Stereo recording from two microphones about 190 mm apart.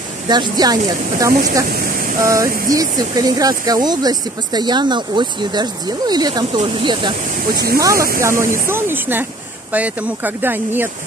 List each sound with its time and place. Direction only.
0.3 s speech: 20° right (ahead or behind)
1.7 s speech: 55° right (ahead or behind)
2.2 s speech: 15° right (ahead or behind)
7.5 s speech: 55° right (ahead or behind)
8.2 s speech: 15° right (ahead or behind)